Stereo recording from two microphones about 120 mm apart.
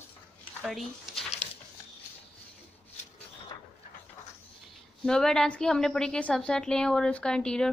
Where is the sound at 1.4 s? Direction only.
70° left (ahead or behind).